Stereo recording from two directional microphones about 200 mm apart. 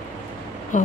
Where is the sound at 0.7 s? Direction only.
40° left (ahead or behind).